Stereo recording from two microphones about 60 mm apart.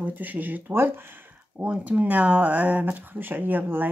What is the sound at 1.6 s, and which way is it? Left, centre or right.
Speech, right.